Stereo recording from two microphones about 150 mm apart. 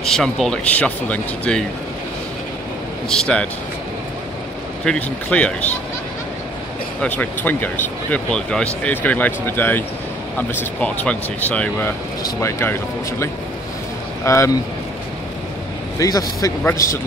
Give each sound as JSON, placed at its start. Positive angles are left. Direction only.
{"t": 0.0, "sound": "speech", "side_deg": 5}
{"t": 3.1, "sound": "speech", "side_deg": 5}
{"t": 4.8, "sound": "speech", "side_deg": 5}
{"t": 7.0, "sound": "speech", "side_deg": 10}
{"t": 16.0, "sound": "speech", "side_deg": 25}